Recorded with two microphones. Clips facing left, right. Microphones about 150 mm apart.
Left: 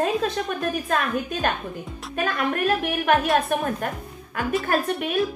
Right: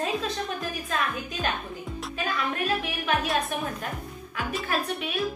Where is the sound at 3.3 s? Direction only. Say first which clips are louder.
Left 6 dB; 50° left (ahead or behind).